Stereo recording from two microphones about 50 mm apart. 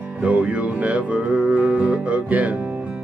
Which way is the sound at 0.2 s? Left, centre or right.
Right.